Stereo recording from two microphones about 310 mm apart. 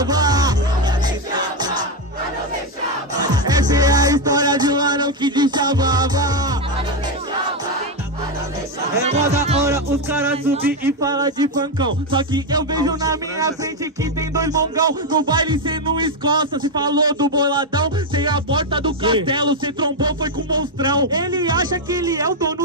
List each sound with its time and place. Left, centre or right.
0.0 s music: centre
3.2 s music: centre
9.1 s music: right
9.7 s music: centre
10.8 s a man's voice: centre